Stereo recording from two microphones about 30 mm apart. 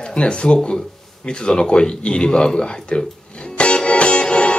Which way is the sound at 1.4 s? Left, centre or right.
Left.